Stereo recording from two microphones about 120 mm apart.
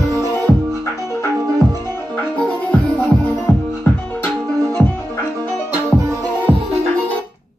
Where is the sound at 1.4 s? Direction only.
30° right (ahead or behind).